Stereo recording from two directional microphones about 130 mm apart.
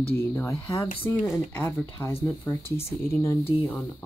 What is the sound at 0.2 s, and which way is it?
Speech, 20° left (ahead or behind).